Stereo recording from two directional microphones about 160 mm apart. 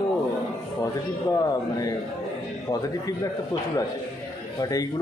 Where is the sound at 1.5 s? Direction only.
25° left (ahead or behind).